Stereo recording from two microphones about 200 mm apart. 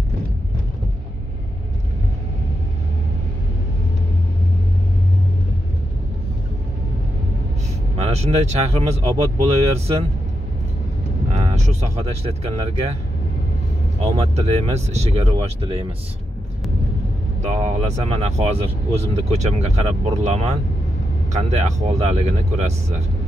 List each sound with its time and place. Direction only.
8.0 s speech: 35° right (ahead or behind)
11.5 s speech: 35° right (ahead or behind)
14.0 s speech: 30° right (ahead or behind)
17.4 s speech: 35° right (ahead or behind)